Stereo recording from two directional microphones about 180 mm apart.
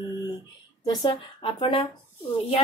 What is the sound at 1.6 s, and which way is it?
Speech, 30° left (ahead or behind).